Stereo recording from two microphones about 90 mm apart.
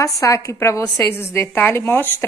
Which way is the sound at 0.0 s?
35° left (ahead or behind).